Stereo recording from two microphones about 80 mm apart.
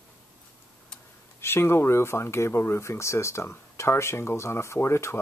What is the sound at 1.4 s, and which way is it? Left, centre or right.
Speech, left.